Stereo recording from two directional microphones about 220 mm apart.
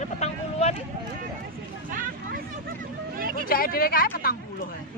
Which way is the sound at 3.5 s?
40° left (ahead or behind).